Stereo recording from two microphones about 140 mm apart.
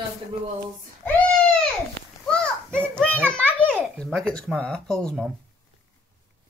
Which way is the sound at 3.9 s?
5° left (ahead or behind).